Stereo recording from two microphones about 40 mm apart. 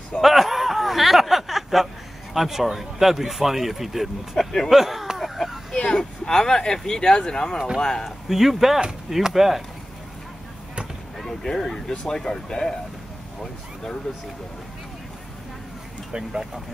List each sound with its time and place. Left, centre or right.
0.2 s a sound: centre
2.3 s speech: centre
4.4 s speech: centre
4.6 s speech: centre
5.7 s speech: left
7.5 s speech: centre
7.8 s speech: centre
8.3 s speech: centre
11.1 s speech: centre
16.1 s speech: centre